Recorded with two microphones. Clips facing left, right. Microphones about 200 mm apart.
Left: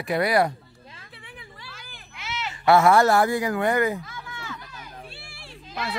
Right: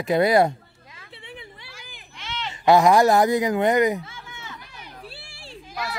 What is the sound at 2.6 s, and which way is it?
Speech, 15° right (ahead or behind).